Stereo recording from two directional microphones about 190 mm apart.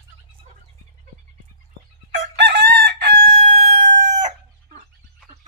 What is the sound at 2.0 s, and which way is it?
Crowing, 55° right (ahead or behind).